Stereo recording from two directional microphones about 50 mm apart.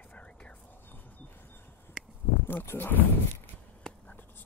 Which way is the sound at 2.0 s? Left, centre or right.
Centre.